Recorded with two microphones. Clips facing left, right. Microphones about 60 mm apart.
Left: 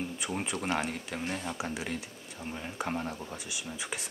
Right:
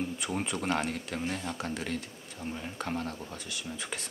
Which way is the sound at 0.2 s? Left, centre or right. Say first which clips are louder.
Right 1 dB; centre.